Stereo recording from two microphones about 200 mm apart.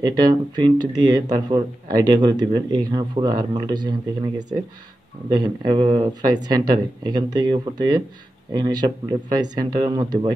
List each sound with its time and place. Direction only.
0.0 s speech: 20° right (ahead or behind)